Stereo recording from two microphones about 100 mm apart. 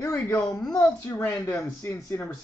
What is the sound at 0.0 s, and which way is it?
Speech, 30° left (ahead or behind).